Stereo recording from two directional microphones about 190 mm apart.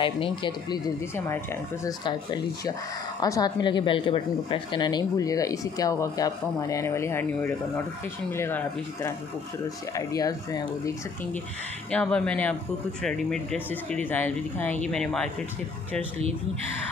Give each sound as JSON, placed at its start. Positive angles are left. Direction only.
{"t": 0.0, "sound": "speech", "side_deg": 25}
{"t": 11.9, "sound": "speech", "side_deg": 5}